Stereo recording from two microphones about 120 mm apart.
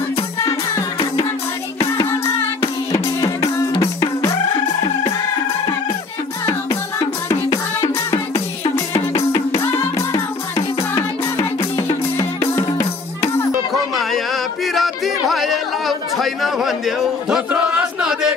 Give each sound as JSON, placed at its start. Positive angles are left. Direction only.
{"t": 2.2, "sound": "music", "side_deg": 20}
{"t": 8.1, "sound": "music", "side_deg": 25}
{"t": 12.5, "sound": "music", "side_deg": 25}
{"t": 13.9, "sound": "music", "side_deg": 0}
{"t": 17.5, "sound": "chant", "side_deg": -10}